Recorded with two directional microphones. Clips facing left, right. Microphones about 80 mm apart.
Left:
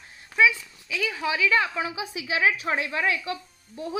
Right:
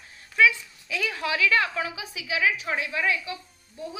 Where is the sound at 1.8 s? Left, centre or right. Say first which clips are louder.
Left 2 dB; left.